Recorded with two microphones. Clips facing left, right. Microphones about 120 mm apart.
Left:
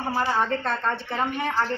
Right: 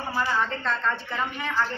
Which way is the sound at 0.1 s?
30° left (ahead or behind).